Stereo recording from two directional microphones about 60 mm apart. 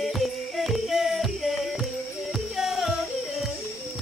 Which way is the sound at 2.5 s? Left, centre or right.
Centre.